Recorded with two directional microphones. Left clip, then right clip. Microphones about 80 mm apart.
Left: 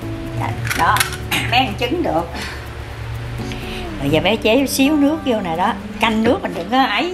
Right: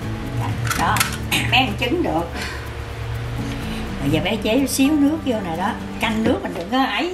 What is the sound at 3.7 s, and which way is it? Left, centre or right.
A woman's voice, left.